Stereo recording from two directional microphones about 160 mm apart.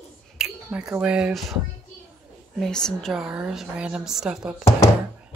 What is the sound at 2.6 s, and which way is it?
A woman's voice, 5° left (ahead or behind).